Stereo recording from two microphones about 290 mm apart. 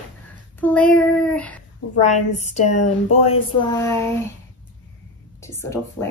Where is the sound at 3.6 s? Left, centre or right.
Centre.